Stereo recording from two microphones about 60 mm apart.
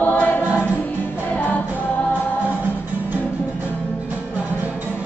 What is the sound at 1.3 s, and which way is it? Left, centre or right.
Music, left.